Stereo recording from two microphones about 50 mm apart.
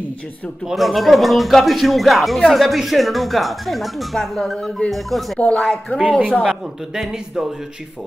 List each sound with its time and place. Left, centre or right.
0.7 s speech: centre
5.4 s speech: left
6.0 s speech: right
6.4 s a man's voice: centre